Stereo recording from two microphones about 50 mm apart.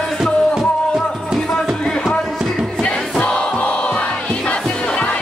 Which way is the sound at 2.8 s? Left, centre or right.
Left.